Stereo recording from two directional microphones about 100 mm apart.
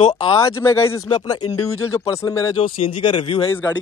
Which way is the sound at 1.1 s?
40° left (ahead or behind).